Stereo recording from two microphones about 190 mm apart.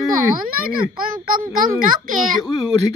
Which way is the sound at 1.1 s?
45° right (ahead or behind).